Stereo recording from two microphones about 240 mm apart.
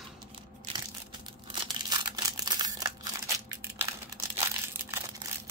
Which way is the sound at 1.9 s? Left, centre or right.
Centre.